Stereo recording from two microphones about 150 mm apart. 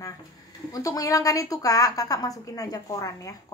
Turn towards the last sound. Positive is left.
turn(degrees=20)  # may be behind; listen again after turning